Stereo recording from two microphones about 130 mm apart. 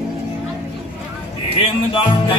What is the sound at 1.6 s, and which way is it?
Music, 40° left (ahead or behind).